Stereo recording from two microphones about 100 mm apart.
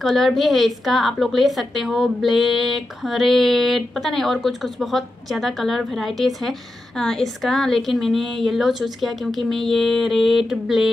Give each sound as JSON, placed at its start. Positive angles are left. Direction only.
{"t": 0.0, "sound": "a woman's voice", "side_deg": 0}